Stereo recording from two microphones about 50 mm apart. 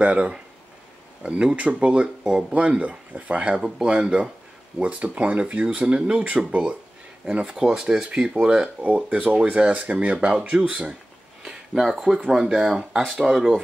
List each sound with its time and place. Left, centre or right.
0.0 s speech: right
3.6 s speech: centre
11.4 s a sound: centre
11.9 s speech: centre
12.3 s speech: centre